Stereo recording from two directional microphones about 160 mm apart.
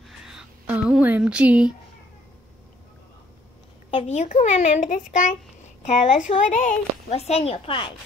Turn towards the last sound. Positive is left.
turn(degrees=35)  # may be behind; listen again after turning